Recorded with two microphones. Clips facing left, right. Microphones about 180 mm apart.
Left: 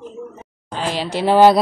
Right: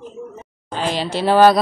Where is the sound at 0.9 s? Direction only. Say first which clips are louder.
Left 1 dB; 10° left (ahead or behind).